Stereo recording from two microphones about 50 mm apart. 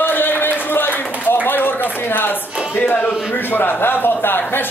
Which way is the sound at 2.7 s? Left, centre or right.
Left.